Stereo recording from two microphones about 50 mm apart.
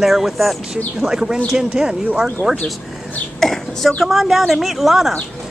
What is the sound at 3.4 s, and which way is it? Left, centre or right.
Speech, centre.